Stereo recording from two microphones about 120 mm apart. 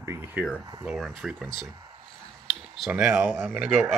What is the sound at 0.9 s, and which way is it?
Speech, centre (ahead or behind).